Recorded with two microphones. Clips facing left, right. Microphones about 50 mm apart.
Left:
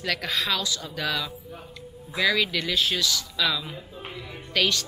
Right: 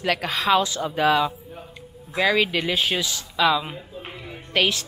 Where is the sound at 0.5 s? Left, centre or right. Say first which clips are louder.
Right 9 dB; right.